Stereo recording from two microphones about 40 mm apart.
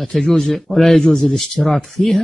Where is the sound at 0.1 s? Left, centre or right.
Centre.